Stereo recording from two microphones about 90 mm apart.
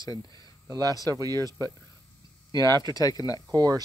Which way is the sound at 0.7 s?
45° right (ahead or behind).